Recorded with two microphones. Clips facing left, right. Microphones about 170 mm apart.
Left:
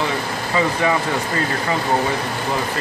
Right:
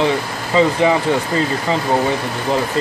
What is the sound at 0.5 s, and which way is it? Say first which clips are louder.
Speech: right 6 dB; 25° right (ahead or behind).